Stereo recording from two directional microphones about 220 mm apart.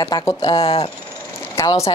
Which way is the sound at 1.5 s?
15° left (ahead or behind).